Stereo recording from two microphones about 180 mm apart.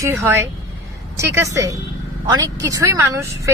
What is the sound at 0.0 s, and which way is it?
Speech, 15° right (ahead or behind).